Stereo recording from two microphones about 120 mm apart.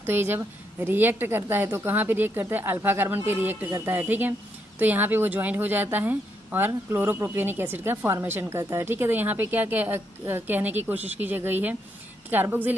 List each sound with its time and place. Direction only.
0.0 s a woman's voice: 20° right (ahead or behind)